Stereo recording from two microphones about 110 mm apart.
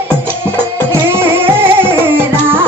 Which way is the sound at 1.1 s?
20° right (ahead or behind).